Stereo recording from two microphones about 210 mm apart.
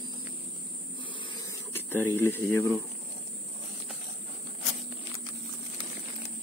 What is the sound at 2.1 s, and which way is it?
Speech, 10° left (ahead or behind).